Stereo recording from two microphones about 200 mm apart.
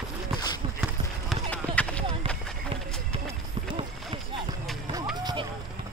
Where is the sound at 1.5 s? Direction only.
5° left (ahead or behind).